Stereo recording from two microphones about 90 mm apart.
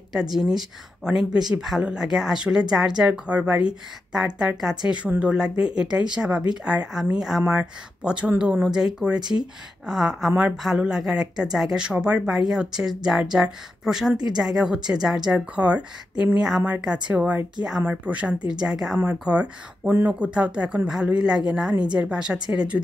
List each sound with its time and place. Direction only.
0.1 s speech: 5° right (ahead or behind)